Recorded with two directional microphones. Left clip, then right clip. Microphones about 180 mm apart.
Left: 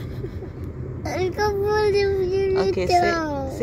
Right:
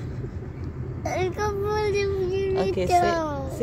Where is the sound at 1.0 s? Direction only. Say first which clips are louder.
Left 3 dB; centre (ahead or behind).